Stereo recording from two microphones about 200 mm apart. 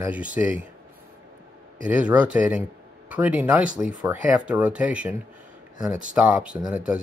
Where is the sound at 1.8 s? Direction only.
5° right (ahead or behind).